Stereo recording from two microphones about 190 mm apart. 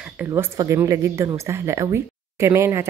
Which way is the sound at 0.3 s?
15° right (ahead or behind).